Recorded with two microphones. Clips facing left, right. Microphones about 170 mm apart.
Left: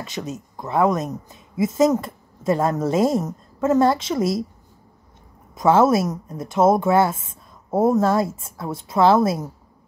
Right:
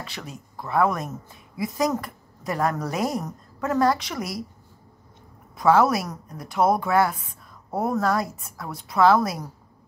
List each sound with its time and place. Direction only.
0.0 s speech: 20° left (ahead or behind)
5.5 s speech: 20° left (ahead or behind)